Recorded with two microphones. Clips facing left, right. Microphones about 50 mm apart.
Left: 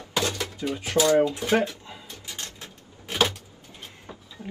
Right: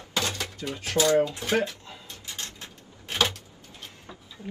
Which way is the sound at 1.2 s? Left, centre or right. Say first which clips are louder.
Left 2 dB; left.